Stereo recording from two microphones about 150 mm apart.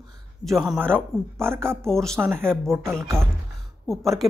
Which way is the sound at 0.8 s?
15° right (ahead or behind).